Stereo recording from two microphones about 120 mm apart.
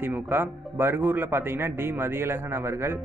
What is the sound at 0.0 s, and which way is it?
A man's voice, 15° right (ahead or behind).